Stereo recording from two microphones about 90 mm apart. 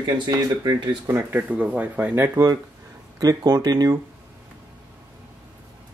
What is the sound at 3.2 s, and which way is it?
Speech, 40° right (ahead or behind).